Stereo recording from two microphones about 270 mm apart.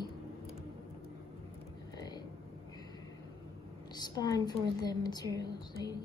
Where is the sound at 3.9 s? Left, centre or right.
Centre.